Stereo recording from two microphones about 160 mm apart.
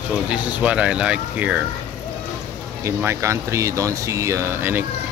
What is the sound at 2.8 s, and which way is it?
Speech, 15° right (ahead or behind).